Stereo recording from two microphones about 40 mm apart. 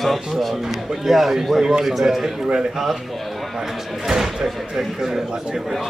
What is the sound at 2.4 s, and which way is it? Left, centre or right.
A man's voice, right.